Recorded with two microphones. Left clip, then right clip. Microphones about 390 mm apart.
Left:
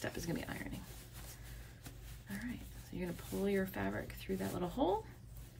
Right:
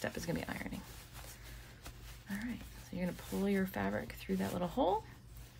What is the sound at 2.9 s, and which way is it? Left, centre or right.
Speech, centre.